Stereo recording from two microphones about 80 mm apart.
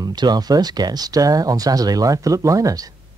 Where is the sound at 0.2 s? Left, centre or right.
Right.